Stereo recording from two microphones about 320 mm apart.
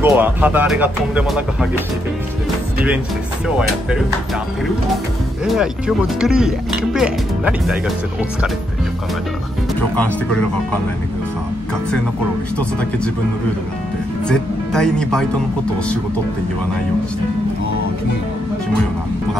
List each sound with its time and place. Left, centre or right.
0.0 s speech: centre
3.4 s speech: centre
5.4 s speech: centre
9.9 s speech: centre
14.2 s speech: centre